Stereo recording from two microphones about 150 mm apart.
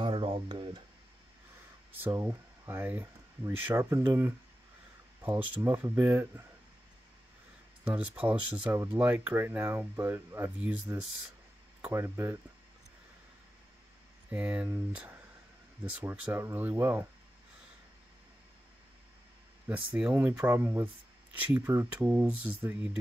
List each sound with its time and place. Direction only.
0.0 s a sound: 35° right (ahead or behind)
1.9 s speech: 10° right (ahead or behind)
7.8 s speech: 10° right (ahead or behind)
14.3 s speech: 10° right (ahead or behind)
15.8 s speech: 10° right (ahead or behind)
19.7 s speech: 10° right (ahead or behind)